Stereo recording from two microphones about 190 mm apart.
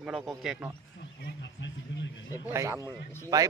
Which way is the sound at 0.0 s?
5° right (ahead or behind).